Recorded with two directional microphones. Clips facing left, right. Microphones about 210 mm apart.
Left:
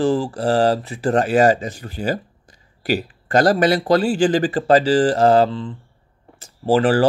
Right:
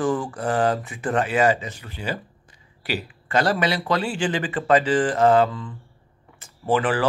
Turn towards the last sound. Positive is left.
turn(degrees=30)  # may be behind; listen again after turning